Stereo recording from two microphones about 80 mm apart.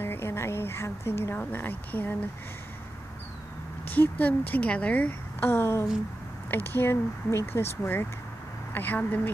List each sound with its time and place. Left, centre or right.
0.0 s a woman's voice: left
3.8 s a woman's voice: left